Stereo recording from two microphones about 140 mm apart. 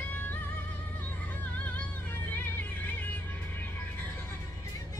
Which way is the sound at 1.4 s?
15° left (ahead or behind).